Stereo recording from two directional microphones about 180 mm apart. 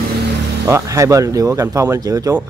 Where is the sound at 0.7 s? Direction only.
15° right (ahead or behind).